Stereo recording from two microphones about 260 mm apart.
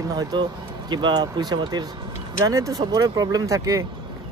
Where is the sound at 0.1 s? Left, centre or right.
Centre.